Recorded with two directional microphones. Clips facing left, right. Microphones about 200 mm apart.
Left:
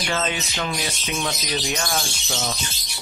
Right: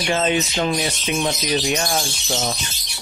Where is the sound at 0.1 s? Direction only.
25° right (ahead or behind).